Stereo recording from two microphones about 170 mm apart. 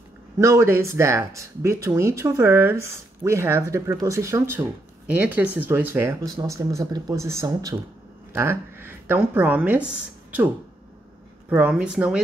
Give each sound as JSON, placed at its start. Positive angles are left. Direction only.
{"t": 0.4, "sound": "speech", "side_deg": -15}